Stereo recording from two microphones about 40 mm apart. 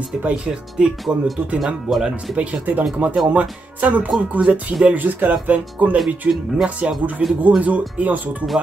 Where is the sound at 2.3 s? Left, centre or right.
Right.